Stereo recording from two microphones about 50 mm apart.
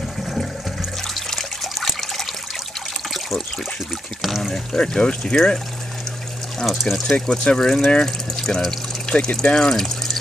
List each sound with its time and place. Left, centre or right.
1.3 s water: centre
4.2 s speech: centre
4.7 s speech: centre
6.6 s speech: centre
7.2 s speech: centre